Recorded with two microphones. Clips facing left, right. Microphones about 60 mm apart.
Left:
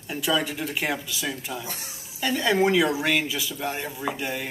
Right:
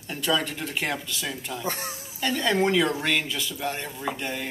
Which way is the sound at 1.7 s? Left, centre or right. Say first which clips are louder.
Right 7 dB; right.